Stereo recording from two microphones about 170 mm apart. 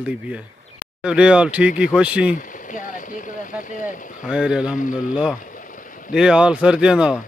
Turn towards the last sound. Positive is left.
turn(degrees=-5)  # may be behind; listen again after turning